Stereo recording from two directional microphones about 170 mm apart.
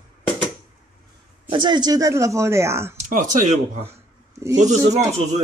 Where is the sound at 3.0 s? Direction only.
45° right (ahead or behind).